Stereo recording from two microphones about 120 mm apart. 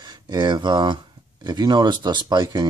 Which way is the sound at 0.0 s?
35° right (ahead or behind).